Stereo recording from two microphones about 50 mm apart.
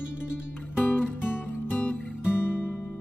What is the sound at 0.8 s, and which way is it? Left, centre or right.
Music, left.